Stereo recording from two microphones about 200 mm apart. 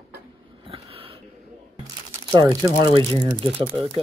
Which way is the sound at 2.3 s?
20° right (ahead or behind).